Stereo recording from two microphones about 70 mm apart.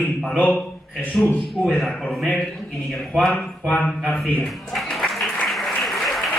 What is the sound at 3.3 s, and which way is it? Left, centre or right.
Speech, centre.